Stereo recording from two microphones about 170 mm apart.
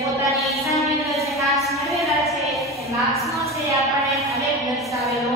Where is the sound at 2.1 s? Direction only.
Centre (ahead or behind).